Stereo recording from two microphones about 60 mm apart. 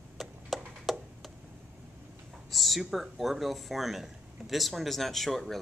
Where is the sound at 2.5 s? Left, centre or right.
Centre.